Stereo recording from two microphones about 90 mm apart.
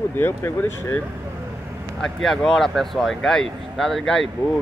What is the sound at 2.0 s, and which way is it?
Speech, 5° left (ahead or behind).